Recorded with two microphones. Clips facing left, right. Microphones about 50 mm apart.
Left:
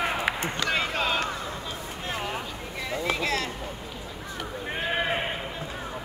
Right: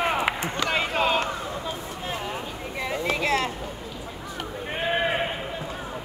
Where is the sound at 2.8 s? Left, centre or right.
Right.